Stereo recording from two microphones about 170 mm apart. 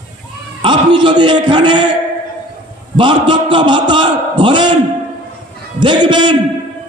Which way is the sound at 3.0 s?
30° right (ahead or behind).